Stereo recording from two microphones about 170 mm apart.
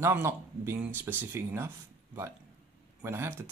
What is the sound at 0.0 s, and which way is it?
Speech, 15° right (ahead or behind).